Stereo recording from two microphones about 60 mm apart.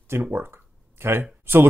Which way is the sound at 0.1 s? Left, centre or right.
Right.